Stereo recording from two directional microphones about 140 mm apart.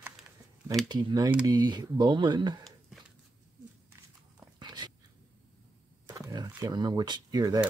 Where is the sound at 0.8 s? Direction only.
30° right (ahead or behind).